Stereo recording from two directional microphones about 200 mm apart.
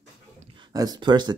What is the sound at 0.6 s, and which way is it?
Speech, 20° right (ahead or behind).